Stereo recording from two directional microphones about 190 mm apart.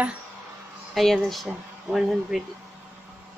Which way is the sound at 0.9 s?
Centre (ahead or behind).